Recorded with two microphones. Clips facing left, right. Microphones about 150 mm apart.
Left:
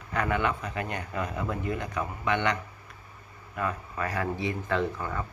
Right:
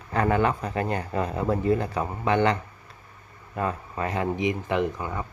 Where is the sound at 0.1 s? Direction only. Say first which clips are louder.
Right 5 dB; 35° right (ahead or behind); by 5.2 s 15° right (ahead or behind).